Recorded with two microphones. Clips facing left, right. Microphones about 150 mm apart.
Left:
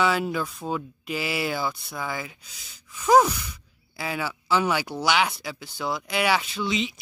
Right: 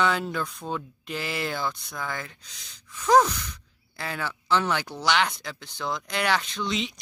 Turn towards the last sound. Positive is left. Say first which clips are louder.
# left 2 dB
turn(degrees=0)  # may be behind; listen again after turning